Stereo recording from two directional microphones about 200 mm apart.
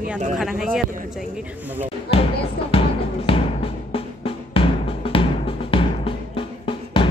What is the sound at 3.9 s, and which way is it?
Music, 30° left (ahead or behind).